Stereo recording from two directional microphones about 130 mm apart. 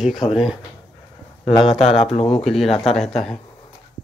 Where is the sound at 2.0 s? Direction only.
50° left (ahead or behind).